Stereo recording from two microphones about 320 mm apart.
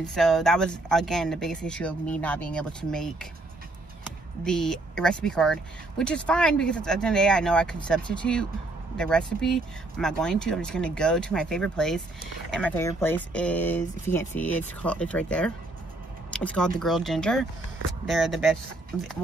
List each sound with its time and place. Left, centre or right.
0.0 s speech: centre
4.5 s speech: centre